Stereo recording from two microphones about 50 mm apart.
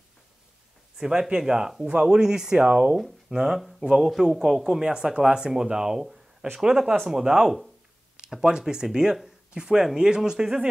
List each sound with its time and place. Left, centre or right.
0.9 s a man's voice: centre
4.8 s speech: centre